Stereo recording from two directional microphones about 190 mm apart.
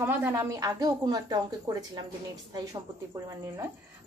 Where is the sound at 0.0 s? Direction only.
10° right (ahead or behind).